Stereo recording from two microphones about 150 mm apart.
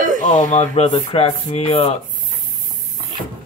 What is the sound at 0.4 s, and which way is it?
A man's voice, 55° left (ahead or behind).